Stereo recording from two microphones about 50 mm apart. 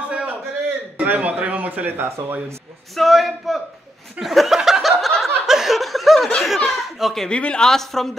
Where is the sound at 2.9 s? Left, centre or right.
Centre.